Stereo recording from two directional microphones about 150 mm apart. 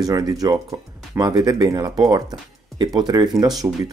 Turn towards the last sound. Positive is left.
turn(degrees=-25)  # may be behind; listen again after turning